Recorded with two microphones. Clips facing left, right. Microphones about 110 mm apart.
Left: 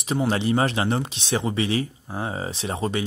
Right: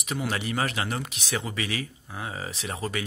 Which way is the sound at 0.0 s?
30° left (ahead or behind).